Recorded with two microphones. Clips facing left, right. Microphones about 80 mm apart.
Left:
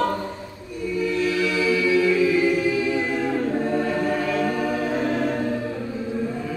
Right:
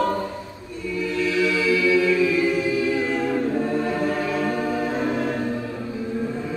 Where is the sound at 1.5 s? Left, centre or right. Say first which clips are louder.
Left 1 dB; left.